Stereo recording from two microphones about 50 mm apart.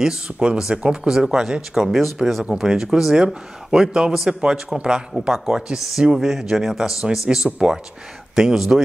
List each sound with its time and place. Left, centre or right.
0.0 s a man's voice: centre
1.7 s speech: centre
2.5 s a man's voice: centre